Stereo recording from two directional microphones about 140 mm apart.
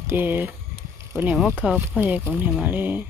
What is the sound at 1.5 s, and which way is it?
Speech, 10° right (ahead or behind).